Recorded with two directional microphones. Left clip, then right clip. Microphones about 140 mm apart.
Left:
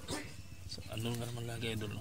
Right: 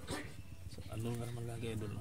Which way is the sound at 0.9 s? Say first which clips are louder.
Left 2 dB; 15° left (ahead or behind).